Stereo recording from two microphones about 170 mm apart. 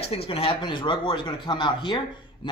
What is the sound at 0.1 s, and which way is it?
Speech, 35° left (ahead or behind).